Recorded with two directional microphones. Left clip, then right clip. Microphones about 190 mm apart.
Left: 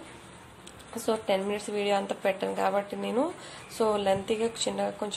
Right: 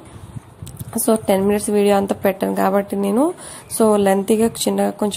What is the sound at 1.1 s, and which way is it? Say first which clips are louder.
Speech: right 11 dB; 40° right (ahead or behind).